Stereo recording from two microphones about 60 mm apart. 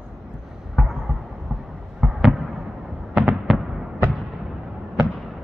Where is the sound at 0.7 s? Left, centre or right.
Centre.